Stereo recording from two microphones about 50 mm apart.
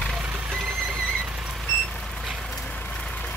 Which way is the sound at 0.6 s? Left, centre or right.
Right.